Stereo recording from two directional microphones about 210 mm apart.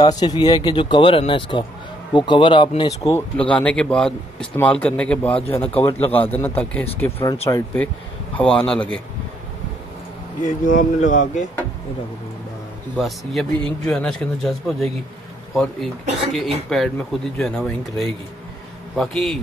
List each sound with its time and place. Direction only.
0.0 s speech: 20° left (ahead or behind)
5.6 s speech: 25° left (ahead or behind)
5.9 s speech: 10° left (ahead or behind)
10.4 s speech: 35° left (ahead or behind)
12.9 s speech: centre (ahead or behind)